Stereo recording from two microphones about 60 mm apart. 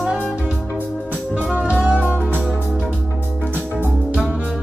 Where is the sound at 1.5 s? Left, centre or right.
Centre.